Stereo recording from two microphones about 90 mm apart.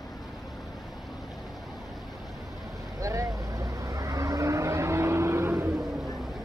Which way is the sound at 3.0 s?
35° right (ahead or behind).